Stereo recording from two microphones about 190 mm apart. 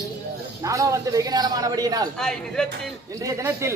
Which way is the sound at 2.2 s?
5° left (ahead or behind).